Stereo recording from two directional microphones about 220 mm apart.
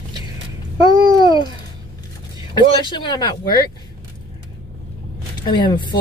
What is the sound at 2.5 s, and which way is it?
Speech, 20° left (ahead or behind).